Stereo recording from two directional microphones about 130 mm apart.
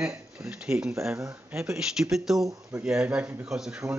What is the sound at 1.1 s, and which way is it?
Speech, 20° right (ahead or behind).